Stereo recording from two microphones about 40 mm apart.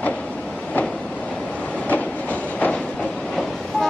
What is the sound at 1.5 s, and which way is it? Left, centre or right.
Train, left.